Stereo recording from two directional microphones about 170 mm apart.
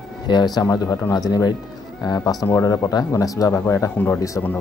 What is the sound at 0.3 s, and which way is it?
Speech, 25° left (ahead or behind).